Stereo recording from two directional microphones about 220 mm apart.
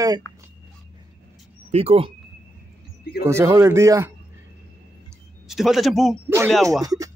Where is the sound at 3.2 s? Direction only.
15° right (ahead or behind).